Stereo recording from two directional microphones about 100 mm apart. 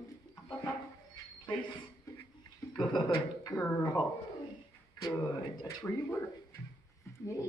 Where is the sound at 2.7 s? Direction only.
50° left (ahead or behind).